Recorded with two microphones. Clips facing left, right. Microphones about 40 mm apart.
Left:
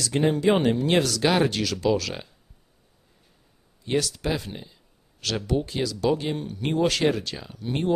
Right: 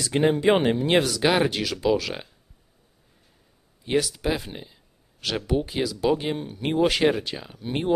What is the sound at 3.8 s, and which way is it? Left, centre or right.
Speech, centre.